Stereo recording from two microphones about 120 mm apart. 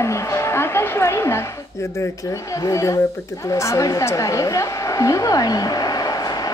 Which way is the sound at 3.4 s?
25° left (ahead or behind).